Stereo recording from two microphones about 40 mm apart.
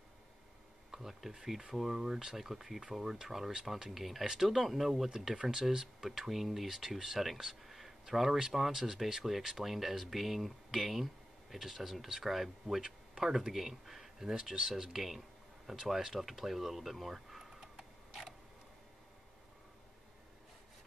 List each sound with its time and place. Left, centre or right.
0.9 s speech: centre
5.1 s speech: centre
14.3 s speech: right
14.6 s speech: centre